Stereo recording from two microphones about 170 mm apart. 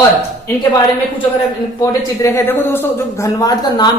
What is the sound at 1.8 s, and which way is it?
A woman's voice, 15° left (ahead or behind).